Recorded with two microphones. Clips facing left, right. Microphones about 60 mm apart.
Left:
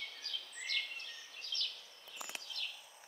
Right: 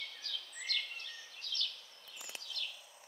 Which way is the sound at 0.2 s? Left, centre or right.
Left.